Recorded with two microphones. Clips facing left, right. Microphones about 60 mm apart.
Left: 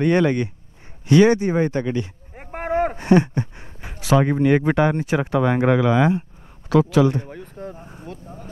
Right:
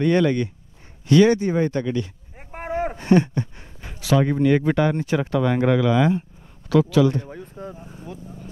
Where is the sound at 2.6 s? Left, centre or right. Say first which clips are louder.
Left 4 dB; left.